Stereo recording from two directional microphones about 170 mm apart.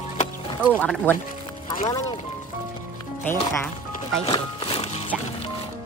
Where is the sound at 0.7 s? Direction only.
10° left (ahead or behind).